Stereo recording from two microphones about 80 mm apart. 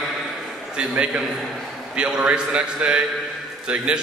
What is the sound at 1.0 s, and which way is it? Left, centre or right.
A man's voice, centre.